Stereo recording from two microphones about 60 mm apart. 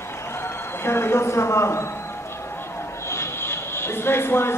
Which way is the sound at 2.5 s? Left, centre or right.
Left.